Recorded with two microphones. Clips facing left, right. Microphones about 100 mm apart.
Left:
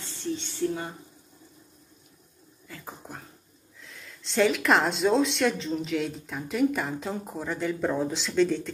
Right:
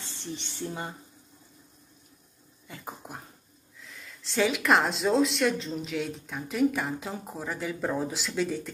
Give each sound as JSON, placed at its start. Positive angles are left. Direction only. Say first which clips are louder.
{"t": 0.0, "sound": "speech", "louder": "left 6 dB", "side_deg": -20}
{"t": 2.7, "sound": "a sound", "louder": "right 1 dB", "side_deg": -20}
{"t": 3.8, "sound": "speech", "louder": "even", "side_deg": 0}